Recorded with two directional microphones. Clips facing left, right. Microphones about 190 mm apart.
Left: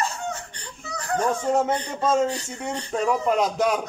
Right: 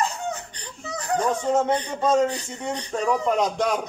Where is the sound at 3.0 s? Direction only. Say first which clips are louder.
Even; 5° left (ahead or behind).